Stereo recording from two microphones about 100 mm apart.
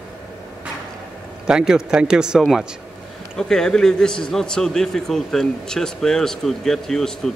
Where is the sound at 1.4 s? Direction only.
5° right (ahead or behind).